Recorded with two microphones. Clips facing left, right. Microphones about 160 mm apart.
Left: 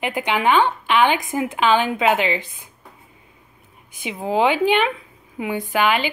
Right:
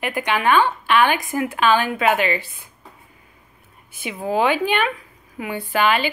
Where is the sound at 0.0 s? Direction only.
15° left (ahead or behind).